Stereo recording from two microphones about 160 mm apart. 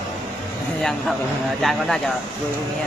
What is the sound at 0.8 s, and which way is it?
Speech, centre (ahead or behind).